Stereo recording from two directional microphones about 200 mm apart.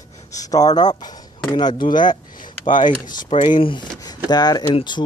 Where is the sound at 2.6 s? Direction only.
40° left (ahead or behind).